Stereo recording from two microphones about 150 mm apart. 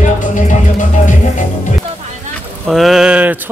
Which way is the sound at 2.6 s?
Centre (ahead or behind).